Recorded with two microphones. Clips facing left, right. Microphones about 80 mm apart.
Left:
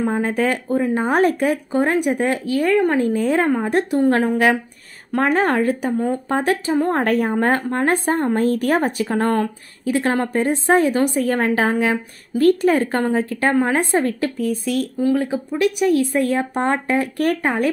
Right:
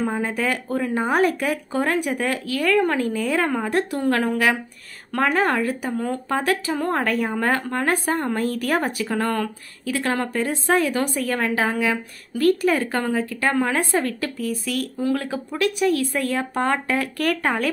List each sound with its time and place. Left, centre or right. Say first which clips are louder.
0.0 s a woman's voice: left 4 dB; left
5.9 s speech: left 4 dB; centre; by 13.5 s left
13.5 s a woman's voice: left 3 dB; left
15.0 s a woman's voice: left 5 dB; centre